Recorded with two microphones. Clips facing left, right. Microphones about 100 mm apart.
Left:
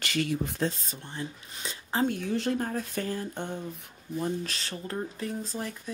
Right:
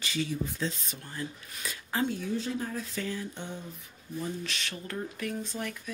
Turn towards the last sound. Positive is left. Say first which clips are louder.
# left 1 dB
turn(degrees=30)  # may be behind; listen again after turning